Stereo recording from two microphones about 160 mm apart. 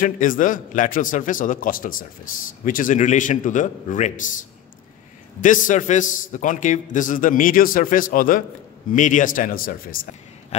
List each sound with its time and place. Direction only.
0.0 s a man's voice: 55° left (ahead or behind)